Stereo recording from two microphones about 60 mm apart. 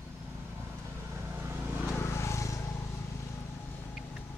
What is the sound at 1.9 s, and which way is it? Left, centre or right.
Vehicle, left.